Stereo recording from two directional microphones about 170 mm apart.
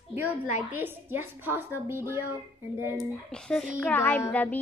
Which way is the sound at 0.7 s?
10° right (ahead or behind).